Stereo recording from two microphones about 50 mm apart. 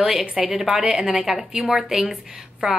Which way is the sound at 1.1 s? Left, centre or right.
Centre.